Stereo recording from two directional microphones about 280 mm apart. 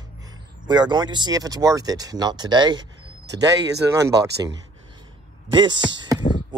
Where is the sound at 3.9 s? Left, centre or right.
Centre.